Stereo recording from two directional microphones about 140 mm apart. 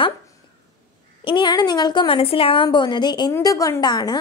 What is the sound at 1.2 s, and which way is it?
A woman's voice, 35° left (ahead or behind).